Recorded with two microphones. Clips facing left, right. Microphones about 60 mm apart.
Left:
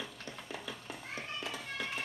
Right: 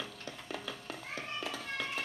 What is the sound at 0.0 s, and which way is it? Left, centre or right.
Music, left.